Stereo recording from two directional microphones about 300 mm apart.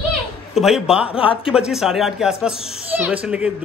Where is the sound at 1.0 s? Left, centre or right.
Centre.